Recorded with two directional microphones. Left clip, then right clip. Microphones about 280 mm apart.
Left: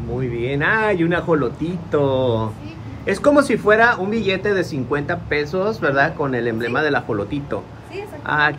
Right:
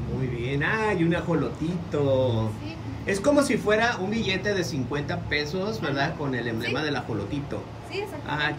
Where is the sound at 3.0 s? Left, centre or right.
Centre.